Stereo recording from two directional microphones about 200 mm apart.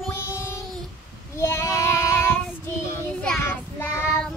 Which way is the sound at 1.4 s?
15° left (ahead or behind).